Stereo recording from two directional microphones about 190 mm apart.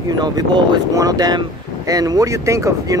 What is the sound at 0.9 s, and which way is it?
Speech, 20° right (ahead or behind).